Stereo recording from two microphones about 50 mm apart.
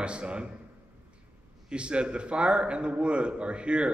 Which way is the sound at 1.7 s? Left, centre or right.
Right.